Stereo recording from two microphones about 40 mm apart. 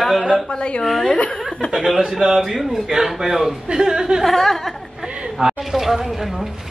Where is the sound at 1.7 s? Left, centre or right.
Centre.